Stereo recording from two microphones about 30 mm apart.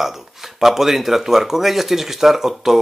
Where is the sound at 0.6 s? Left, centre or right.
Centre.